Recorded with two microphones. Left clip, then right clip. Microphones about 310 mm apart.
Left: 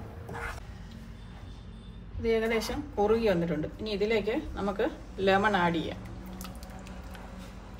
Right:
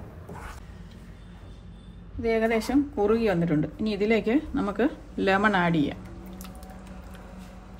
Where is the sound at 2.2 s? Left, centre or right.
Right.